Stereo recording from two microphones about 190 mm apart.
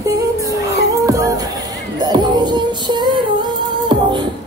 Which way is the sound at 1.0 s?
15° right (ahead or behind).